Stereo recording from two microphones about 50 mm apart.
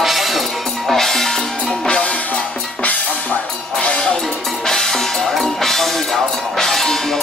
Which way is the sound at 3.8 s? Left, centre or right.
Centre.